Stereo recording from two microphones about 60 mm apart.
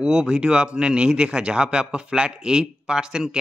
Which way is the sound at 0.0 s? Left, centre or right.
Centre.